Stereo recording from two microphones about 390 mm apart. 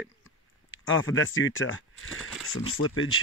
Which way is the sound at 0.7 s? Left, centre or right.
Left.